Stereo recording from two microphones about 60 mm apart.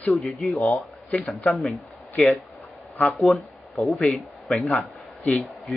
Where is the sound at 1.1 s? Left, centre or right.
Left.